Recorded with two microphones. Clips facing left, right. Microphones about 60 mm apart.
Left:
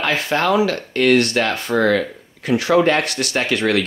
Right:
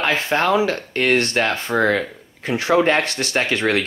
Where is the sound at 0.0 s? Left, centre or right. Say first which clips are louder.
Even; right.